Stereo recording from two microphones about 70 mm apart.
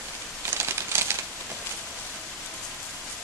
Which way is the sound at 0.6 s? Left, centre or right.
Right.